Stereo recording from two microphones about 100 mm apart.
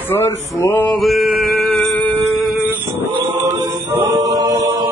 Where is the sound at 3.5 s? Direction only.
40° right (ahead or behind).